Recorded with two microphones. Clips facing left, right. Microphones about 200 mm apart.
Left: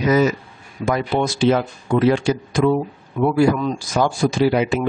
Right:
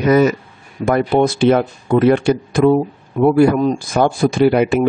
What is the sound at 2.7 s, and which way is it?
Speech, 45° right (ahead or behind).